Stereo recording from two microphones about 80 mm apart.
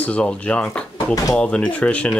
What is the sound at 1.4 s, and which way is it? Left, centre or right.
Speech, centre.